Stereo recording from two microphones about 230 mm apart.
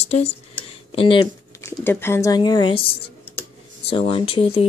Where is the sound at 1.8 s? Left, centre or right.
Centre.